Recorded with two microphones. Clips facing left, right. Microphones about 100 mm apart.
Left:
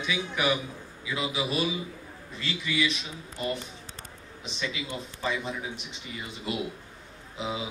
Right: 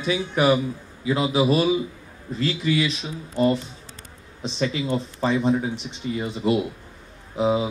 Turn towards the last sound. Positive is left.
turn(degrees=-40)  # may be behind; listen again after turning